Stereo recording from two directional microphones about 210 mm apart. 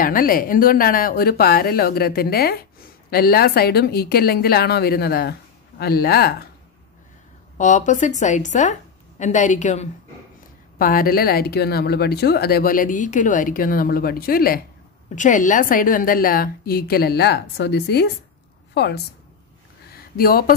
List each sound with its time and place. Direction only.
0.0 s speech: 40° left (ahead or behind)
7.5 s a woman's voice: 35° left (ahead or behind); by 18.1 s 50° left (ahead or behind)
19.9 s a sound: 45° left (ahead or behind)